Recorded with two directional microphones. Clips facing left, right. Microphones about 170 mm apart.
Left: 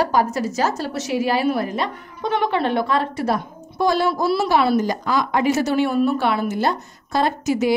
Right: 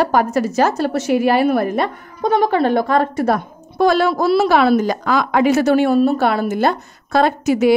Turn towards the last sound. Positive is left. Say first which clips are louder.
# right 5 dB
turn(degrees=-65)  # may be behind; listen again after turning